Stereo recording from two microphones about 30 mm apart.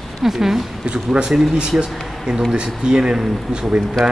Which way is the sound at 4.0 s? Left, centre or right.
Centre.